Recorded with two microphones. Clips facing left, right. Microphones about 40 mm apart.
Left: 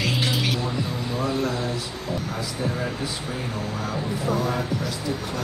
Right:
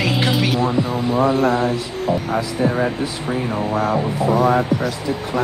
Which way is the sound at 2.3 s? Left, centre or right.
Centre.